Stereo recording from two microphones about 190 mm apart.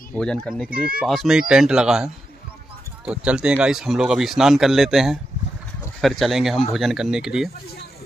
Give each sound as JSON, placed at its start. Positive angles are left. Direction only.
{"t": 0.1, "sound": "speech", "side_deg": 5}
{"t": 0.7, "sound": "speech", "side_deg": -50}
{"t": 0.9, "sound": "speech", "side_deg": 0}
{"t": 3.1, "sound": "speech", "side_deg": -5}